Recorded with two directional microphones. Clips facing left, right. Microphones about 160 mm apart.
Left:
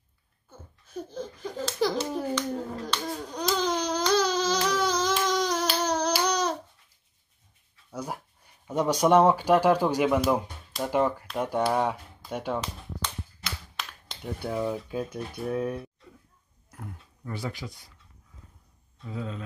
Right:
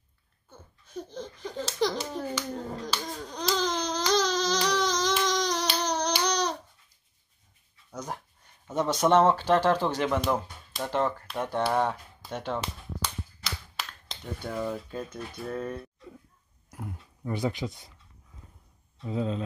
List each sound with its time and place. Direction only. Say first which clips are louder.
0.5 s a child's voice: left 1 dB; 5° left (ahead or behind)
3.1 s baby cry: left 2 dB; 10° left (ahead or behind)
4.1 s a sound: left 1 dB; 10° left (ahead or behind)
7.9 s dog: left 2 dB; 10° left (ahead or behind)
8.6 s speech: left 2 dB; 10° left (ahead or behind)
16.7 s speech: right 3 dB; 15° right (ahead or behind)
19.0 s speech: right 6 dB; 25° right (ahead or behind)